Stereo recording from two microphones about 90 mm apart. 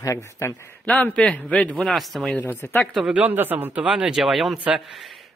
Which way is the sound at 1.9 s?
Centre (ahead or behind).